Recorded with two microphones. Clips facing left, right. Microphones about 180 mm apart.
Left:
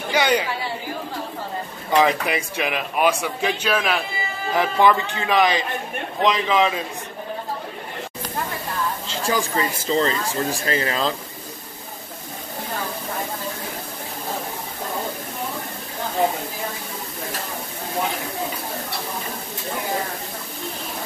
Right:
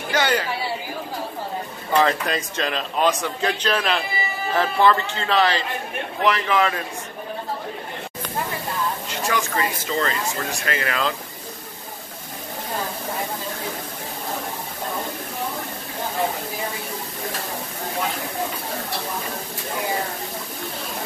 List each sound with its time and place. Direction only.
0.1 s chatter: 15° left (ahead or behind)
1.9 s a man's voice: 15° left (ahead or behind)
9.0 s speech: 30° left (ahead or behind)